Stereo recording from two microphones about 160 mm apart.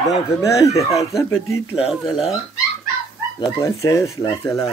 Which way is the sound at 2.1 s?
40° left (ahead or behind).